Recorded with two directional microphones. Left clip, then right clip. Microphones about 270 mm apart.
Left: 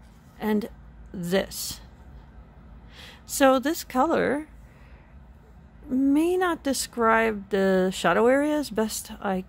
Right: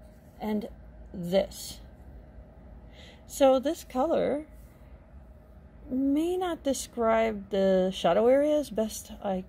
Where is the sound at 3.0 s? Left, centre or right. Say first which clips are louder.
Left 2 dB; left.